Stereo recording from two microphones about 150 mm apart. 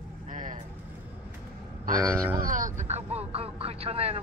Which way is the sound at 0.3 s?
60° right (ahead or behind).